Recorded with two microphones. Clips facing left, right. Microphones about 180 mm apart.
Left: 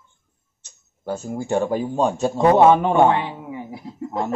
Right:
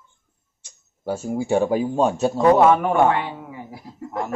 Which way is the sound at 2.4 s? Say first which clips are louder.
Left 1 dB; 20° left (ahead or behind).